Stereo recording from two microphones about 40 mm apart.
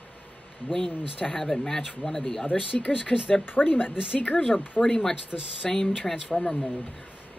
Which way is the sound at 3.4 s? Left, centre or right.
Left.